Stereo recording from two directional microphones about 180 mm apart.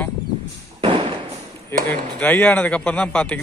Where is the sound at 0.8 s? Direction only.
30° right (ahead or behind).